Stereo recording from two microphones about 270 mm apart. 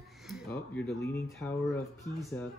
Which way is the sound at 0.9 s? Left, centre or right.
Left.